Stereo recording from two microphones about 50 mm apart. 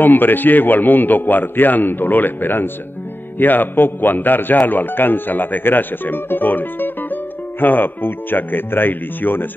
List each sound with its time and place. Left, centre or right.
0.0 s speech: left